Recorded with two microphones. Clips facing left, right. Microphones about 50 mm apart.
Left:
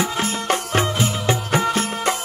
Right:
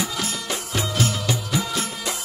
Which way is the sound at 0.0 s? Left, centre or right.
Left.